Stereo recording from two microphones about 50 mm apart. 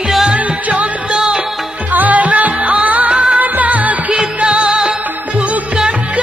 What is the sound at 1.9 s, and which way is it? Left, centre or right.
Music, right.